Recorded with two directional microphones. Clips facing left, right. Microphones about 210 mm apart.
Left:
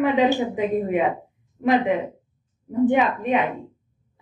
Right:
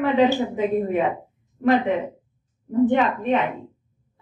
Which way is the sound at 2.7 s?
15° left (ahead or behind).